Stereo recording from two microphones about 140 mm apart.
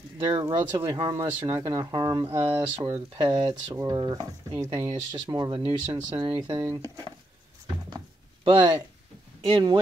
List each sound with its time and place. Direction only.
0.2 s speech: 30° right (ahead or behind)
1.5 s speech: 25° right (ahead or behind)
8.5 s speech: 35° right (ahead or behind)